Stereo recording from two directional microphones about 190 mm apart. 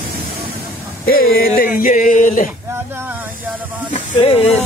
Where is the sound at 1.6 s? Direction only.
45° left (ahead or behind).